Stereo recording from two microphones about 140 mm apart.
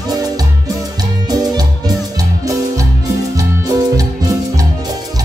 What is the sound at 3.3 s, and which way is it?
Music, 25° right (ahead or behind).